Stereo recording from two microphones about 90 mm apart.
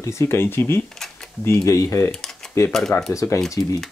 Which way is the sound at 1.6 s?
35° left (ahead or behind).